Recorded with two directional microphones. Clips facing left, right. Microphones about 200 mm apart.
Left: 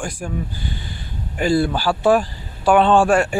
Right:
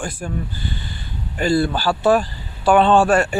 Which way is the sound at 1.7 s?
10° left (ahead or behind).